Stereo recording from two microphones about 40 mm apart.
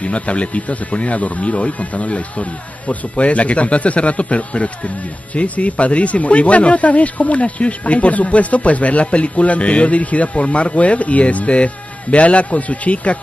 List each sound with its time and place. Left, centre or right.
0.0 s speech: left